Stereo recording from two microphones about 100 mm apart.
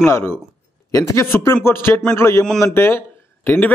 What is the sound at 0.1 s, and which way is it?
A man's voice, 20° left (ahead or behind).